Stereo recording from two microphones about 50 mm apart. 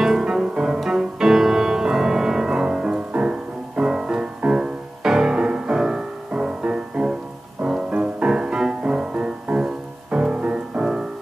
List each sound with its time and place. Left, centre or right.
0.0 s music: centre
7.9 s music: right
9.1 s music: right